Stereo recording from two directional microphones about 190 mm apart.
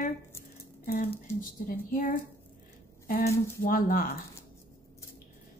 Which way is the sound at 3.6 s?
50° left (ahead or behind).